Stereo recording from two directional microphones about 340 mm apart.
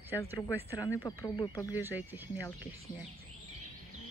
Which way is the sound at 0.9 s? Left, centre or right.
Centre.